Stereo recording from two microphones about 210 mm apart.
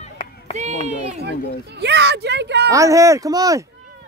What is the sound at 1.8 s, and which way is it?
Speech, 55° right (ahead or behind).